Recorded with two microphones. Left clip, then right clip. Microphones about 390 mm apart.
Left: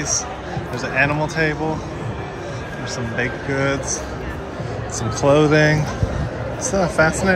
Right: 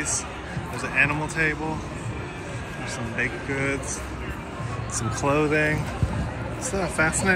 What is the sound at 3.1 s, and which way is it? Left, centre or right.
Speech, centre.